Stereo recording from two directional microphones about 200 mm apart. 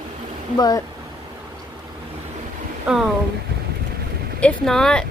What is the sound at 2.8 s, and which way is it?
Speech, centre (ahead or behind).